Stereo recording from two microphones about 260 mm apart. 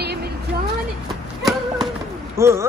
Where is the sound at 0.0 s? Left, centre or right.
Right.